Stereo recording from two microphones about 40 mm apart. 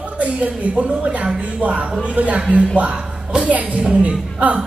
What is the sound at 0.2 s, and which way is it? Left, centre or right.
Speech, right.